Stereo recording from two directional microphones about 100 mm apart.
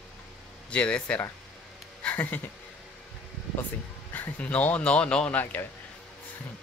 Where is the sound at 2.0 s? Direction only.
15° left (ahead or behind).